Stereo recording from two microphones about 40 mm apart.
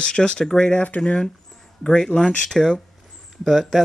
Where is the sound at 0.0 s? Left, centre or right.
Left.